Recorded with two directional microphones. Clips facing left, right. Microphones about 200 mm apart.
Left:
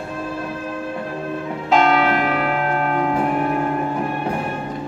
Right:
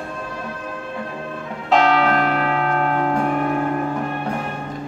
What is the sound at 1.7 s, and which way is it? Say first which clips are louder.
Church bell: even; centre (ahead or behind).